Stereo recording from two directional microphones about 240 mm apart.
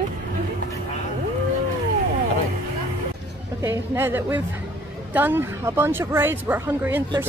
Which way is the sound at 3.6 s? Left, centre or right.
Centre.